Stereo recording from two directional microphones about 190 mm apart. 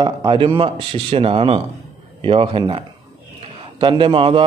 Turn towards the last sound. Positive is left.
turn(degrees=-30)  # may be behind; listen again after turning